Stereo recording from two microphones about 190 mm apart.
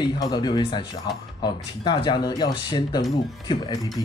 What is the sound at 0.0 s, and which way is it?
Speech, 25° left (ahead or behind).